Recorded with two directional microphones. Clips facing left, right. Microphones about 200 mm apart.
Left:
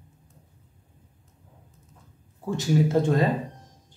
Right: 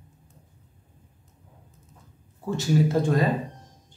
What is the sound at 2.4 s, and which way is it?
Speech, 15° left (ahead or behind).